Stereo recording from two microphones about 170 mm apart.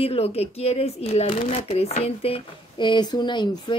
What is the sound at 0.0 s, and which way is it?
Speech, 35° left (ahead or behind).